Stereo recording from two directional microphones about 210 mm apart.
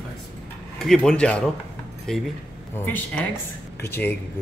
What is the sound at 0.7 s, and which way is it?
Speech, centre (ahead or behind).